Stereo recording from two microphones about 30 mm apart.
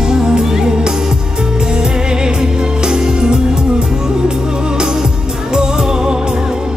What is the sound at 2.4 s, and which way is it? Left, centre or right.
Music, right.